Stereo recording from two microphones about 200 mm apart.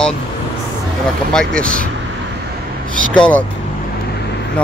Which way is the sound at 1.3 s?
5° left (ahead or behind).